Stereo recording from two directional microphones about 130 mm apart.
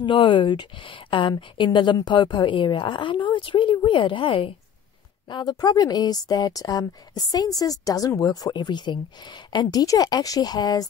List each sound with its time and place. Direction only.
0.0 s speech: 40° left (ahead or behind)
5.3 s speech: 30° left (ahead or behind)